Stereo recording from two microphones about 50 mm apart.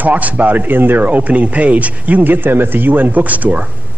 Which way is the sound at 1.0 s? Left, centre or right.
Right.